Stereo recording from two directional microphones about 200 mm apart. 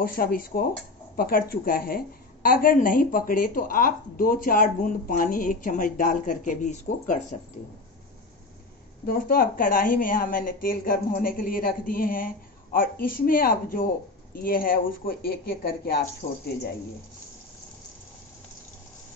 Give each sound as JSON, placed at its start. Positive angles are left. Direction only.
{"t": 0.0, "sound": "a woman's voice", "side_deg": 45}
{"t": 9.0, "sound": "a woman's voice", "side_deg": 45}
{"t": 16.2, "sound": "speech", "side_deg": 35}